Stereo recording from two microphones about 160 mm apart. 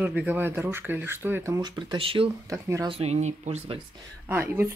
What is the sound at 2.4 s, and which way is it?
Speech, 20° right (ahead or behind).